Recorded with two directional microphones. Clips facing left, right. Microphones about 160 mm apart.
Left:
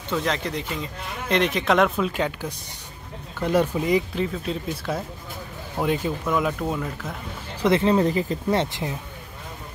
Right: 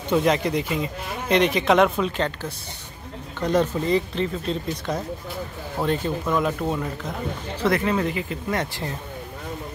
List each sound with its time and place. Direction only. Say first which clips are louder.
0.1 s speech: right 5 dB; 15° right (ahead or behind); by 6.8 s 5° left (ahead or behind)
7.6 s speech: left 3 dB; 25° left (ahead or behind)
8.0 s speech: left 4 dB; 35° left (ahead or behind)